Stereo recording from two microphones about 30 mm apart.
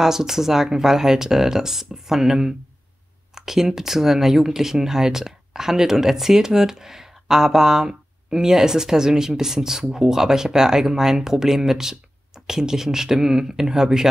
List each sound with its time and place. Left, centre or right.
0.0 s speech: centre